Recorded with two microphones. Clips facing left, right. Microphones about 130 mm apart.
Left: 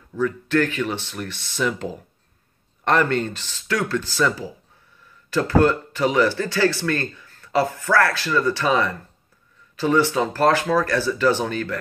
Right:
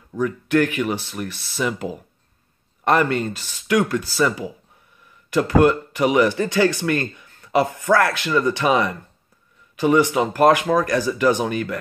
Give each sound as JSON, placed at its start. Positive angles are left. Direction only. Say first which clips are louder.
{"t": 0.1, "sound": "speech", "louder": "right 1 dB", "side_deg": -15}
{"t": 5.3, "sound": "speech", "louder": "right 2 dB", "side_deg": -15}